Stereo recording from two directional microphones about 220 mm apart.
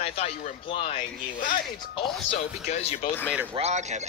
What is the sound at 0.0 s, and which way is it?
A man's voice, 30° left (ahead or behind).